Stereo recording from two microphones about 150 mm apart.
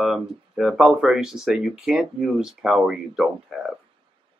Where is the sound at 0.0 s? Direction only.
5° right (ahead or behind).